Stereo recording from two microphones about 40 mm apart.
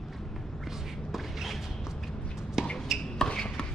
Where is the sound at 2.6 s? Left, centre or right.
Centre.